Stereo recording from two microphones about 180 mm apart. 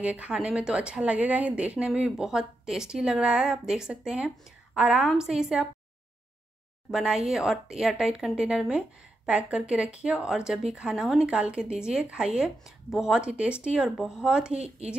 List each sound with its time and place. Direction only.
0.0 s speech: 5° right (ahead or behind)
6.9 s speech: centre (ahead or behind)
14.5 s speech: 35° right (ahead or behind)